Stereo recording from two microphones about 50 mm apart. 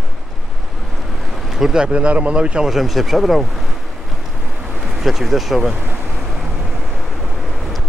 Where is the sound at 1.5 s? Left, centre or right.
Centre.